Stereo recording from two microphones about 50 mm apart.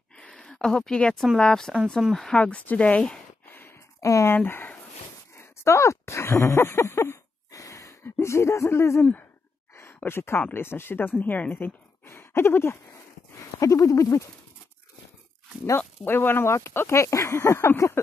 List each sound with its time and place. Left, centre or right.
0.2 s a sound: centre
0.5 s speech: centre
2.0 s speech: centre
2.3 s speech: left
4.0 s speech: left
5.3 s a sound: left
9.8 s a sound: left
10.5 s speech: left
11.5 s a sound: left
13.3 s speech: left
16.0 s speech: left
16.9 s speech: left